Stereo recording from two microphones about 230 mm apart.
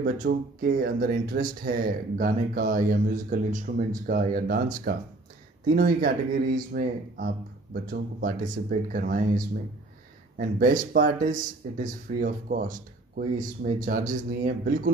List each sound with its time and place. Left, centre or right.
0.0 s speech: right
10.3 s speech: right